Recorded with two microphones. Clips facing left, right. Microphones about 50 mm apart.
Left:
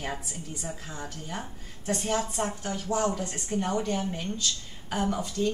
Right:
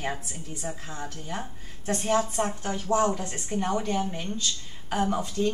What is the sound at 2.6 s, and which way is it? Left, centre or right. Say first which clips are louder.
Speech: right 4 dB; right.